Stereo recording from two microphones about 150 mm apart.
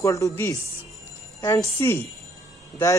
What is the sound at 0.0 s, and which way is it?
Speech, 20° left (ahead or behind).